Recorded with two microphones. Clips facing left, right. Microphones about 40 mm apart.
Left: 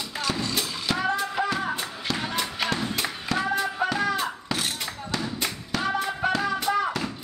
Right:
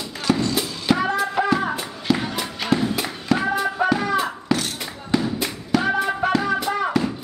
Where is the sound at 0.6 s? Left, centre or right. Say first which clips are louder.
Right 6 dB; centre.